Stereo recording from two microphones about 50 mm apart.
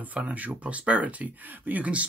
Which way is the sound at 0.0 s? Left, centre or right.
Right.